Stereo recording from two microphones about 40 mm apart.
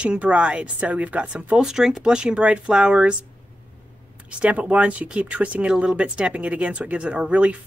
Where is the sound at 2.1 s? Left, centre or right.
Right.